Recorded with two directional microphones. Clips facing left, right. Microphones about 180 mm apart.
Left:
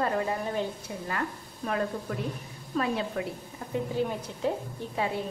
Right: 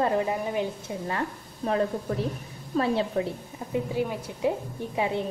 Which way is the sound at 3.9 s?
10° right (ahead or behind).